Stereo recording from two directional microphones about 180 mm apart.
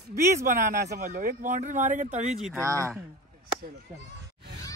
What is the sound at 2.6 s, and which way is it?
Speech, 15° right (ahead or behind).